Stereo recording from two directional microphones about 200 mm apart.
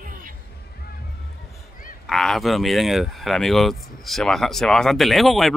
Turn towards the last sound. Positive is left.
turn(degrees=0)  # may be behind; listen again after turning